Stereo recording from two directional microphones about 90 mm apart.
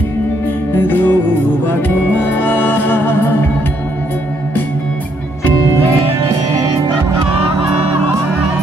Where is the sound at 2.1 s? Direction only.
20° left (ahead or behind).